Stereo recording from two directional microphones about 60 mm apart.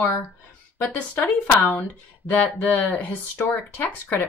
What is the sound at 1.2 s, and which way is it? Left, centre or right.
Speech, left.